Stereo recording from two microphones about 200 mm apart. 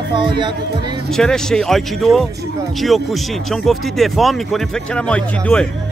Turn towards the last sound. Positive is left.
turn(degrees=5)  # may be behind; listen again after turning